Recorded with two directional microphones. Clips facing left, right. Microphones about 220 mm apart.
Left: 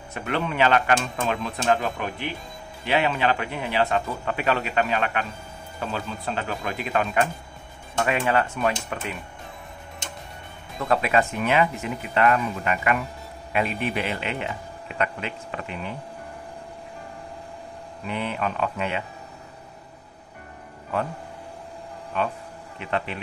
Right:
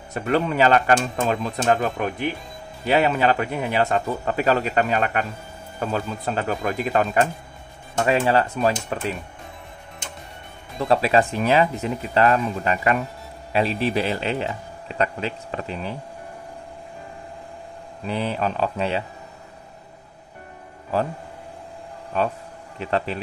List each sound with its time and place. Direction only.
0.1 s a man's voice: 40° right (ahead or behind)
10.8 s a man's voice: 30° right (ahead or behind)
18.0 s a man's voice: 35° right (ahead or behind)
22.1 s a man's voice: 35° right (ahead or behind)